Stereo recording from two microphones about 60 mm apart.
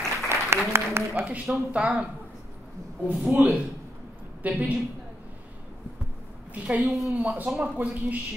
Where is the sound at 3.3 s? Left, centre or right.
Right.